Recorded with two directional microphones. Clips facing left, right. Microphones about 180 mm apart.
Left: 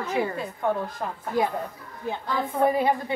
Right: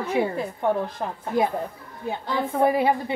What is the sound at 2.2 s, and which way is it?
Speech, 25° right (ahead or behind).